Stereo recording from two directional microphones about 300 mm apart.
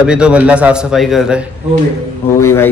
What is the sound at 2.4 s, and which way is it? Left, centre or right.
Speech, centre.